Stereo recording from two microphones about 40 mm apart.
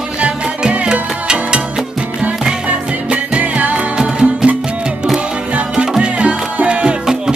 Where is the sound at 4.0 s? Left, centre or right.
Right.